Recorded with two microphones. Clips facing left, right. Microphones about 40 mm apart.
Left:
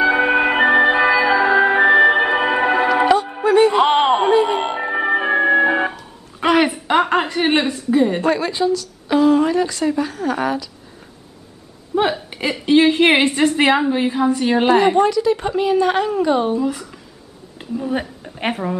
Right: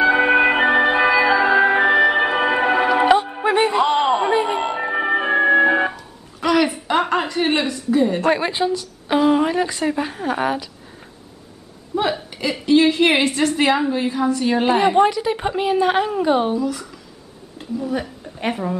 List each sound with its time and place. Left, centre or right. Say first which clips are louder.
0.0 s music: right 1 dB; centre
3.4 s music: left 6 dB; right
3.7 s a sound: left 3 dB; left
4.7 s music: left 1 dB; centre
6.4 s a sound: left 2 dB; left
7.1 s a sound: left 2 dB; centre
8.2 s a woman's voice: even; right
11.9 s a woman's voice: left 3 dB; left
15.0 s a woman's voice: left 1 dB; centre
16.5 s a woman's voice: left 2 dB; left
17.6 s a sound: left 1 dB; left
18.5 s speech: left 1 dB; centre